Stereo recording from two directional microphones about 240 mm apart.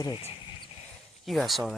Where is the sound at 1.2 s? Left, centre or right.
Centre.